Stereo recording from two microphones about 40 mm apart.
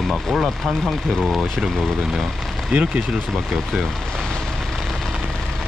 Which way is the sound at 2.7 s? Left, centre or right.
Right.